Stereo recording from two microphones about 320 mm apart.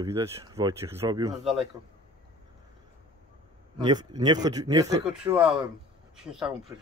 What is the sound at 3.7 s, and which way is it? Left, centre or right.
Speech, centre.